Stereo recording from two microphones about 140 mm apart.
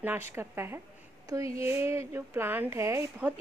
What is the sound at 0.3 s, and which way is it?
Speech, 15° right (ahead or behind).